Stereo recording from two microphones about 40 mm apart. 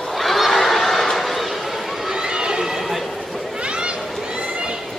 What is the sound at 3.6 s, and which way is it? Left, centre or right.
Children playing, right.